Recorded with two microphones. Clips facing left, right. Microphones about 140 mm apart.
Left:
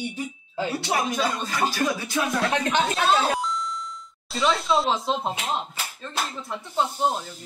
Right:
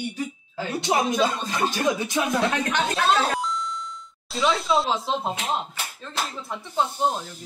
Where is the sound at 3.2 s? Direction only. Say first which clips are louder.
Even; centre (ahead or behind).